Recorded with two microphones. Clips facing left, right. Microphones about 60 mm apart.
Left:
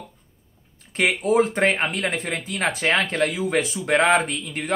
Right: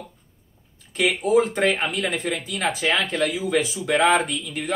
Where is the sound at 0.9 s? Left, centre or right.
Left.